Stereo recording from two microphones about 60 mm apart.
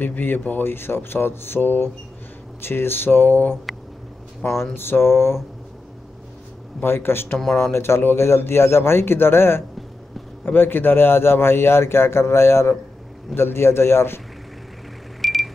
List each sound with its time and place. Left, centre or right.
0.0 s a man's voice: left
6.8 s a man's voice: left
15.2 s a sound: centre